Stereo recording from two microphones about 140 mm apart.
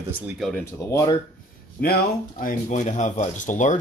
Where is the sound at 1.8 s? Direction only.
85° left.